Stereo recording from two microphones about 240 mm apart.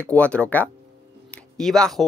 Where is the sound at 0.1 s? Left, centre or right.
Centre.